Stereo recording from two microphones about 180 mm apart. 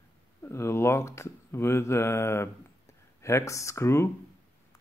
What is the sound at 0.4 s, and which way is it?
Speech, 15° left (ahead or behind).